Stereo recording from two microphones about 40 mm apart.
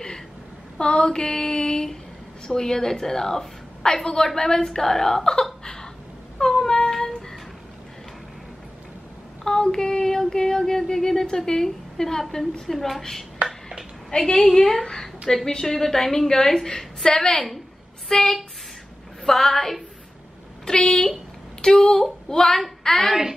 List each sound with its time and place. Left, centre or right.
0.7 s female singing: left
2.4 s a woman's voice: centre
6.3 s a sound: centre
9.4 s child singing: centre
12.7 s a woman's voice: centre
14.1 s a woman's voice: centre